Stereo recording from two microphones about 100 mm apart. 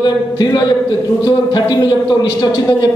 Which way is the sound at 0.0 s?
45° left (ahead or behind).